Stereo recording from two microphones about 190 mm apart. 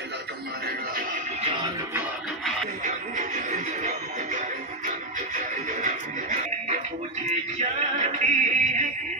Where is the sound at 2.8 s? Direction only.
40° right (ahead or behind).